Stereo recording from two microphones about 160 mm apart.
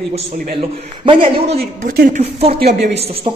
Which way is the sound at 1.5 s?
75° right (ahead or behind).